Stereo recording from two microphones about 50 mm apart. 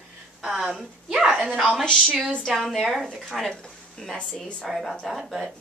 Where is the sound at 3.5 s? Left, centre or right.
Centre.